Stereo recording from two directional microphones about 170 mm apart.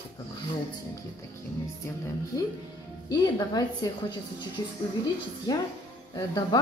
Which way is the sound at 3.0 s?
20° left (ahead or behind).